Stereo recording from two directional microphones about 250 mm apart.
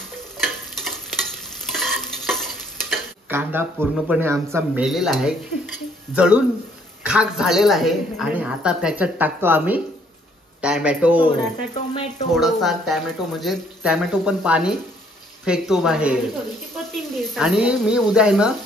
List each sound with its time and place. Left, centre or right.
0.4 s stir: centre
3.3 s speech: centre
11.7 s speech: left
12.4 s speech: centre